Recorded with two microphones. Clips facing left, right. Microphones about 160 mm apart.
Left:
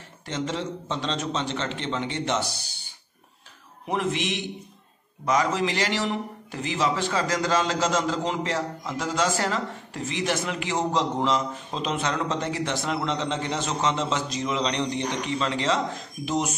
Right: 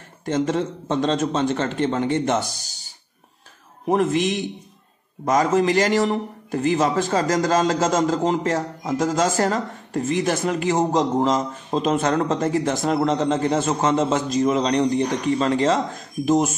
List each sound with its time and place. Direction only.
0.2 s a man's voice: 50° right (ahead or behind)